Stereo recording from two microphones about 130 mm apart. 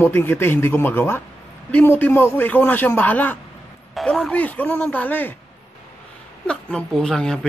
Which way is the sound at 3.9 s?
Centre (ahead or behind).